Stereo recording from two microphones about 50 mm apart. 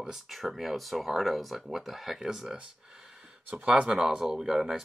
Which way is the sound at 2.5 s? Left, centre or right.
Centre.